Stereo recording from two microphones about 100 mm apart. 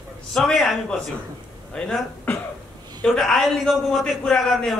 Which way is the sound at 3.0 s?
Centre (ahead or behind).